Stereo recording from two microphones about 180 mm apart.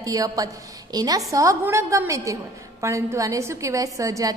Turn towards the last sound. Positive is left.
turn(degrees=-20)  # may be behind; listen again after turning